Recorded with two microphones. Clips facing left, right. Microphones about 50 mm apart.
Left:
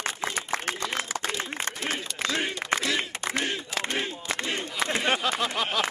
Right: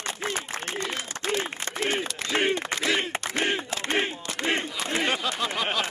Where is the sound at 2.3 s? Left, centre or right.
Right.